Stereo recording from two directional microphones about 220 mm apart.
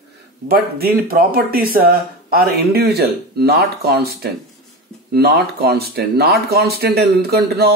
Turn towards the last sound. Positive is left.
turn(degrees=-45)  # may be behind; listen again after turning